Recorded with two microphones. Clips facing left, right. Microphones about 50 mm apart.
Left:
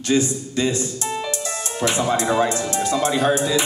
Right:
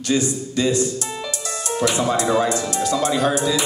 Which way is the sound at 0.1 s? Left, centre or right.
Left.